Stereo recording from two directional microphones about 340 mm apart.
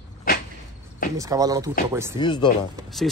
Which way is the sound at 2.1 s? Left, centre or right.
Centre.